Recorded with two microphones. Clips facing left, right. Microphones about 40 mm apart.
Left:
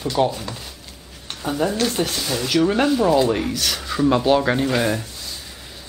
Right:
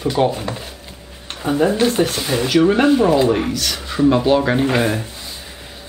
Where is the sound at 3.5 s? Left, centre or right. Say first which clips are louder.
Right 2 dB; centre.